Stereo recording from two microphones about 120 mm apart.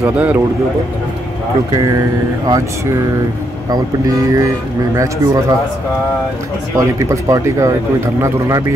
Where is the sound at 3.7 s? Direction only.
30° right (ahead or behind).